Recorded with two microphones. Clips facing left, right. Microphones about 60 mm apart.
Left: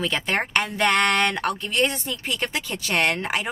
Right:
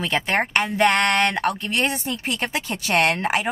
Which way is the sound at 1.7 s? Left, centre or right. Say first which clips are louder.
Even; centre.